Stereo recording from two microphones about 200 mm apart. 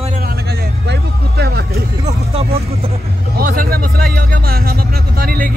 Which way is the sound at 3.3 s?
50° right (ahead or behind).